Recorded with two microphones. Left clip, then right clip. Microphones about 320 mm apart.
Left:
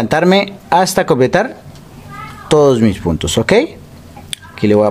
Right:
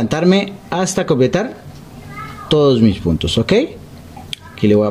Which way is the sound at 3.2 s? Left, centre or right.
Centre.